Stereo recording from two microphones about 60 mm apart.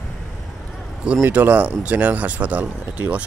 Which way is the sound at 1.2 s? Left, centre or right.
Right.